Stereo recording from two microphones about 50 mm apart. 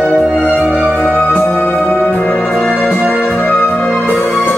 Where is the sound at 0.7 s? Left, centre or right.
Left.